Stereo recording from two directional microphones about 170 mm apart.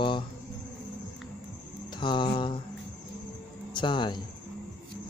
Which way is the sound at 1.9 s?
25° left (ahead or behind).